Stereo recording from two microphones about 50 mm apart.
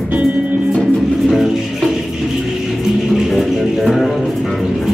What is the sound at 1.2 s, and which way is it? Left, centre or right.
Music, centre.